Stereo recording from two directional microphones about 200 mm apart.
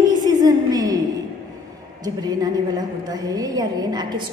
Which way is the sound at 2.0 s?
20° right (ahead or behind).